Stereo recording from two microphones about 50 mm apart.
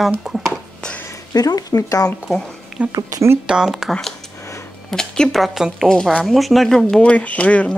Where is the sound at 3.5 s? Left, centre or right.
Centre.